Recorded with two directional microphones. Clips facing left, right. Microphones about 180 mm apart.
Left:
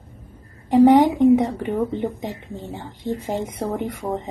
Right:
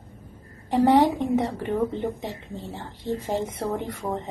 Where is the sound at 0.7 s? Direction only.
15° left (ahead or behind).